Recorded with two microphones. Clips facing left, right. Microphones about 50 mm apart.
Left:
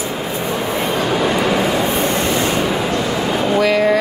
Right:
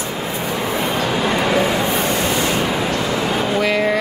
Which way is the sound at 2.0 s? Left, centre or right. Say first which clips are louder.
Left 2 dB; left.